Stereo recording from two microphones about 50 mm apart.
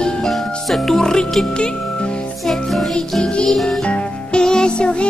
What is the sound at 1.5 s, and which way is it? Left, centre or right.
Speech, centre.